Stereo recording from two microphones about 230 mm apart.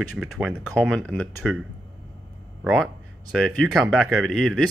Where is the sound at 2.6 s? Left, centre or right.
Centre.